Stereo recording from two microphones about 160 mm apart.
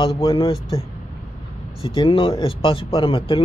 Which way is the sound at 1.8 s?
35° left (ahead or behind).